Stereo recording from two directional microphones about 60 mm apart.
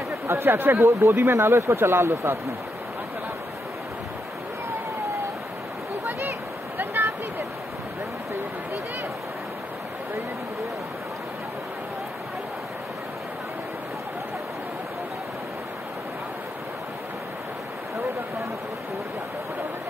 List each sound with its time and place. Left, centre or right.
0.3 s speech: right
1.3 s speech: right
6.8 s a sound: right